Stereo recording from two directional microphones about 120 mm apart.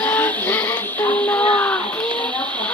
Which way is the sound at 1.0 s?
10° left (ahead or behind).